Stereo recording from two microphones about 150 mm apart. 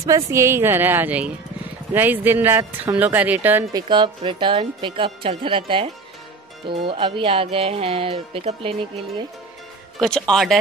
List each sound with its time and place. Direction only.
0.0 s a woman's voice: 20° right (ahead or behind)
3.7 s speech: 30° right (ahead or behind)
9.9 s speech: 5° left (ahead or behind)